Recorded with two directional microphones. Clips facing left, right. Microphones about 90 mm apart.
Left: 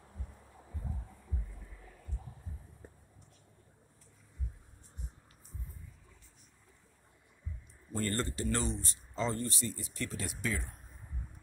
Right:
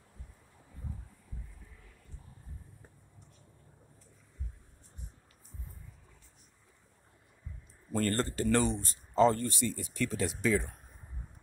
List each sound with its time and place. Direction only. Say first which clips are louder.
8.1 s speech: right 4 dB; 40° right (ahead or behind)
8.5 s speech: right 9 dB; 60° right (ahead or behind)
8.8 s speech: right 11 dB; 50° right (ahead or behind)
9.5 s speech: right 5 dB; 65° right (ahead or behind); by 10.7 s 90° right